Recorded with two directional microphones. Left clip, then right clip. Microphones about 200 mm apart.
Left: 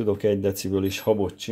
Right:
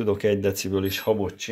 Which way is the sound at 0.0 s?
30° left (ahead or behind).